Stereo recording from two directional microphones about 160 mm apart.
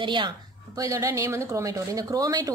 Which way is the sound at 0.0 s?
30° right (ahead or behind).